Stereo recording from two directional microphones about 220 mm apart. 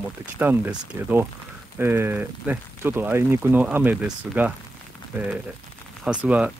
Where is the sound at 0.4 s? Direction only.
10° right (ahead or behind).